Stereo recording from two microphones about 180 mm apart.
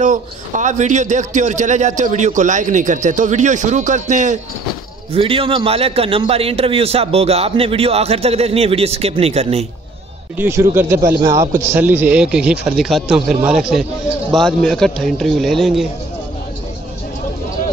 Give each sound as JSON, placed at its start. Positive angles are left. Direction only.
{"t": 0.0, "sound": "a man's voice", "side_deg": -45}
{"t": 5.1, "sound": "a man's voice", "side_deg": -30}
{"t": 10.3, "sound": "speech", "side_deg": -10}